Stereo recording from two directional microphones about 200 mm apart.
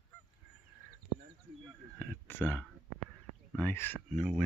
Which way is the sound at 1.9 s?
10° left (ahead or behind).